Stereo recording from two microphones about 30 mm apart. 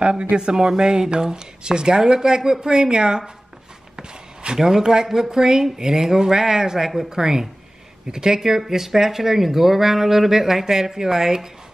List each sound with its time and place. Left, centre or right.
0.0 s speech: right
0.7 s speech: right
3.9 s a sound: right
4.6 s speech: centre